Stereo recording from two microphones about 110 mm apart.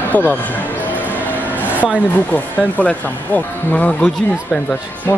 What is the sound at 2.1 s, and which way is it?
Speech, 15° left (ahead or behind).